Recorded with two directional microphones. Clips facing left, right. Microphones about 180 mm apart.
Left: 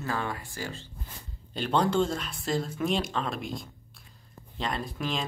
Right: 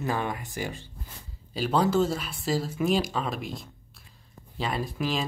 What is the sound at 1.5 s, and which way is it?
Speech, 5° right (ahead or behind).